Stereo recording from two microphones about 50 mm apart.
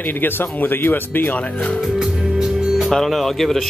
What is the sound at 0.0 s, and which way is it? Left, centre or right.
Speech, left.